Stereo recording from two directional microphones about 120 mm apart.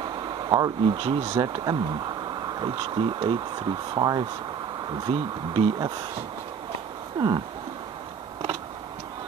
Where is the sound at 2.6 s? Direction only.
40° right (ahead or behind).